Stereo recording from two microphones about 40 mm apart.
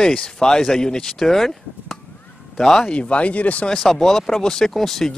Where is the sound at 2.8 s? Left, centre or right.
Left.